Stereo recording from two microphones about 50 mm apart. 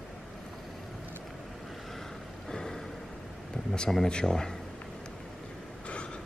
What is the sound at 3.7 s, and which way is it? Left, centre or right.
Speech, centre.